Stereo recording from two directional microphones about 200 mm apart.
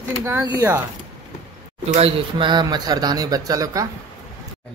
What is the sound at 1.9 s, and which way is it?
Speech, 30° right (ahead or behind).